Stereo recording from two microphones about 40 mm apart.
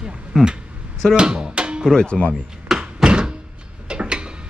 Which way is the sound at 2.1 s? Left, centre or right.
Left.